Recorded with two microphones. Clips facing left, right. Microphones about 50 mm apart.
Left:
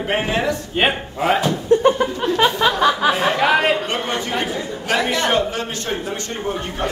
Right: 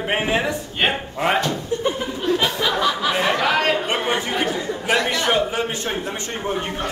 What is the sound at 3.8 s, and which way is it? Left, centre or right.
Speech, centre.